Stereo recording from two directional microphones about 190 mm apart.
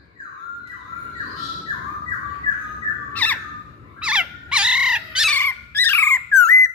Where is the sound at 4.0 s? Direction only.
5° right (ahead or behind).